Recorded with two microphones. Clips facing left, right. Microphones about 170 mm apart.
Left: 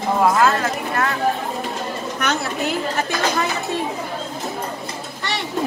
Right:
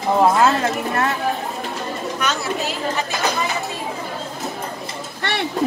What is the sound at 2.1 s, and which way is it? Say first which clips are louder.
Speech: left 1 dB; 60° left (ahead or behind).